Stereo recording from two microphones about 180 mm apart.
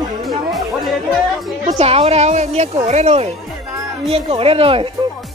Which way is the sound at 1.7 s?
35° right (ahead or behind).